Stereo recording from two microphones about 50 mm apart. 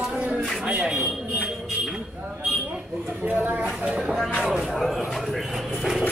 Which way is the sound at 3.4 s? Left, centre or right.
Right.